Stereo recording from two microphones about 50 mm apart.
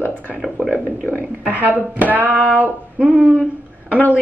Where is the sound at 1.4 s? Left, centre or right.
Right.